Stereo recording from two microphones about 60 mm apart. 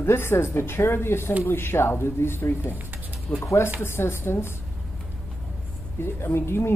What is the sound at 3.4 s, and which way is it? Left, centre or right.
Speech, left.